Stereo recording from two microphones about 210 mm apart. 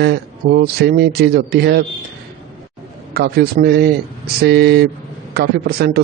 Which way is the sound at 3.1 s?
50° right (ahead or behind).